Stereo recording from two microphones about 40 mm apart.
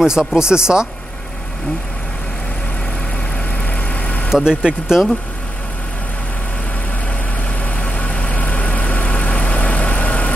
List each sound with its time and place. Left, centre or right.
0.0 s speech: centre
3.7 s vehicle: left
4.3 s speech: centre
7.6 s vehicle: left